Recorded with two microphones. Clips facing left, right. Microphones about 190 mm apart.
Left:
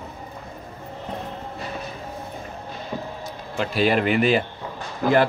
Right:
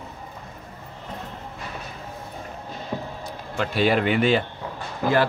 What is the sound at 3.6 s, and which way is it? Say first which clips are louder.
Speech: left 1 dB; centre (ahead or behind).